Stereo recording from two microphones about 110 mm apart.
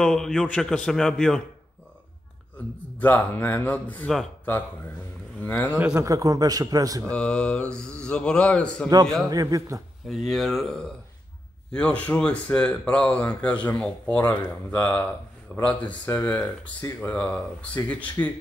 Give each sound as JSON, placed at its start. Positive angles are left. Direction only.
{"t": 0.0, "sound": "speech", "side_deg": 5}
{"t": 3.0, "sound": "speech", "side_deg": 15}
{"t": 5.4, "sound": "a man's voice", "side_deg": 20}
{"t": 5.9, "sound": "a man's voice", "side_deg": -30}
{"t": 7.1, "sound": "speech", "side_deg": 10}
{"t": 9.3, "sound": "a man's voice", "side_deg": -35}
{"t": 10.0, "sound": "speech", "side_deg": 0}
{"t": 11.7, "sound": "speech", "side_deg": 10}